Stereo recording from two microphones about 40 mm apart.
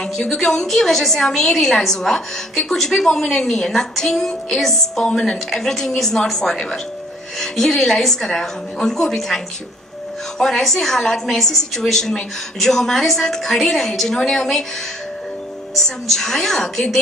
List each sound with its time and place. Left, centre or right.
0.0 s a woman's voice: centre
4.6 s music: centre
5.0 s a woman's voice: centre
6.2 s music: centre
6.5 s a woman's voice: centre
10.4 s a woman's voice: centre
16.1 s a woman's voice: centre